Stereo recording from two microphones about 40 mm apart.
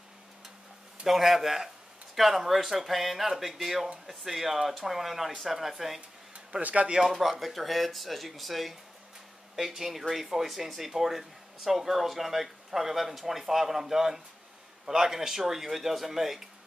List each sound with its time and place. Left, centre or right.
1.0 s speech: centre
6.6 s speech: right
7.1 s speech: centre